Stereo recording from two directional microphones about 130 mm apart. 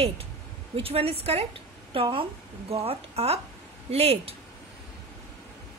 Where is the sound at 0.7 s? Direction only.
50° right (ahead or behind).